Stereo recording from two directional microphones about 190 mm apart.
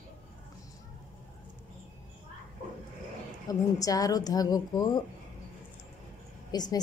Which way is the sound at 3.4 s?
20° left (ahead or behind).